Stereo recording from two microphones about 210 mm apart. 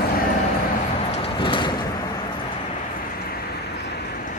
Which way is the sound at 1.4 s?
25° left (ahead or behind).